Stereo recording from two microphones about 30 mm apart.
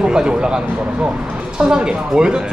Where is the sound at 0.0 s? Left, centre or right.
Right.